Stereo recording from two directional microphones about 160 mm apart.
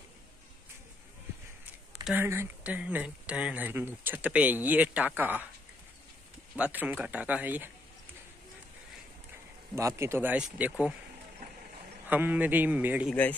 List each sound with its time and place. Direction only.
2.2 s speech: 15° right (ahead or behind)
6.5 s speech: 10° right (ahead or behind)
9.8 s speech: 20° right (ahead or behind)
12.1 s speech: 10° right (ahead or behind)